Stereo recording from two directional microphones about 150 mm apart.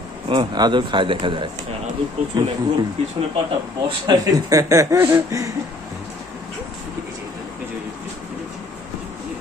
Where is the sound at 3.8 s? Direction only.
25° right (ahead or behind).